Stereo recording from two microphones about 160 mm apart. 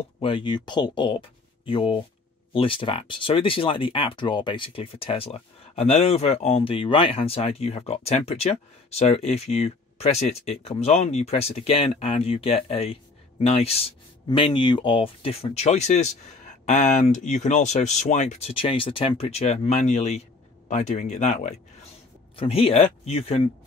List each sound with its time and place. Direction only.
0.2 s speech: 30° left (ahead or behind); by 21.5 s 50° left (ahead or behind)
22.3 s speech: 35° left (ahead or behind)